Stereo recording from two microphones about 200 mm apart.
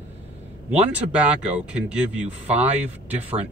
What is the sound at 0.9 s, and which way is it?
Speech, 5° right (ahead or behind).